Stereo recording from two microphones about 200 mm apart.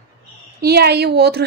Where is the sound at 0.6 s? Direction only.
55° right (ahead or behind).